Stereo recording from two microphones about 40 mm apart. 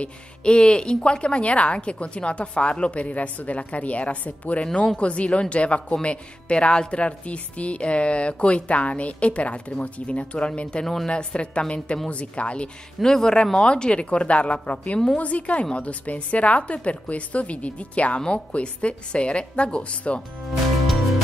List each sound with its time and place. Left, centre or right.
0.0 s a woman's voice: left
13.0 s a woman's voice: centre; by 20.2 s left